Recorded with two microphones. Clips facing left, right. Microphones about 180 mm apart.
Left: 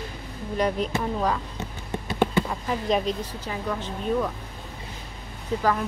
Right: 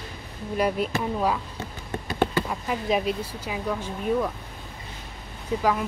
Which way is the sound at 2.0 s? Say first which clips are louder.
Left 1 dB; 20° left (ahead or behind).